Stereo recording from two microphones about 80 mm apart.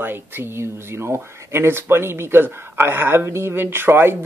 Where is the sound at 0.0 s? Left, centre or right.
Right.